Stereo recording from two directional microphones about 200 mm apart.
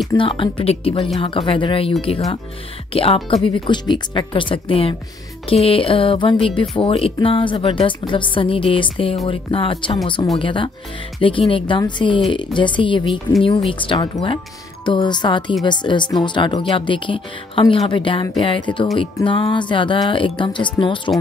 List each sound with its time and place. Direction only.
0.1 s speech: 25° left (ahead or behind)